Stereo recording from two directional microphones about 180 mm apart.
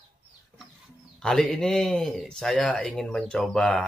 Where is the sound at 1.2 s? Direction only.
5° left (ahead or behind).